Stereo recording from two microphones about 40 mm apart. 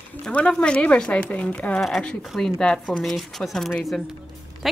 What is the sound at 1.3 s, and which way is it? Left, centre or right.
Speech, left.